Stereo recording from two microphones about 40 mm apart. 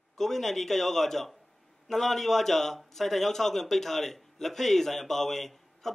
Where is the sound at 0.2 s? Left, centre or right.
Centre.